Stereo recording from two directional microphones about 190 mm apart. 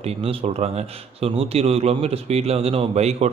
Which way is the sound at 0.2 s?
30° right (ahead or behind).